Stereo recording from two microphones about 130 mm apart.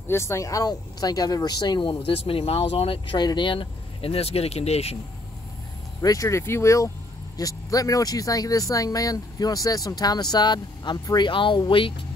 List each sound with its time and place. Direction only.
0.1 s speech: 20° left (ahead or behind); by 4.9 s 55° left (ahead or behind)
5.9 s speech: 25° left (ahead or behind)